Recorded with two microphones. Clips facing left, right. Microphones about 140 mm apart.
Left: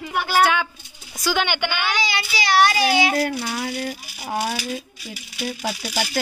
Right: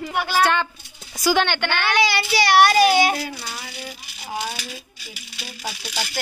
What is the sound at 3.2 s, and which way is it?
Speech, 55° left (ahead or behind).